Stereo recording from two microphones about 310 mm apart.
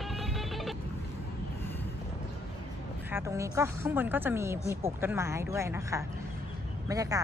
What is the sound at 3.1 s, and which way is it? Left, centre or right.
A woman's voice, centre.